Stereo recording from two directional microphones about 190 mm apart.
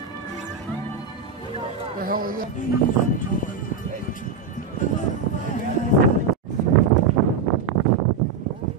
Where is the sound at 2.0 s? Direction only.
50° right (ahead or behind).